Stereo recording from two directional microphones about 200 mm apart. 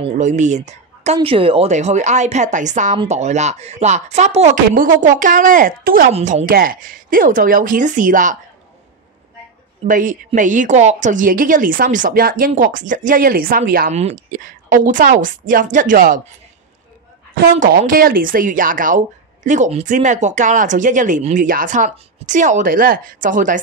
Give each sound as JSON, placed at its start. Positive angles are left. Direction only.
{"t": 0.0, "sound": "speech", "side_deg": -35}
{"t": 9.8, "sound": "speech", "side_deg": -40}
{"t": 17.4, "sound": "speech", "side_deg": -45}